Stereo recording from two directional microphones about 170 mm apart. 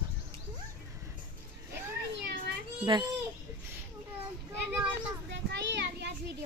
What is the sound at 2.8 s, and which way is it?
Speech, 30° right (ahead or behind).